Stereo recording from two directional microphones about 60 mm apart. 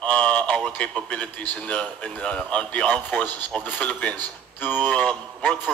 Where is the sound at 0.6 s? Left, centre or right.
Centre.